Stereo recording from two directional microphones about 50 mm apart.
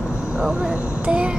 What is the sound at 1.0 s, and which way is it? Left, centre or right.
Speech, right.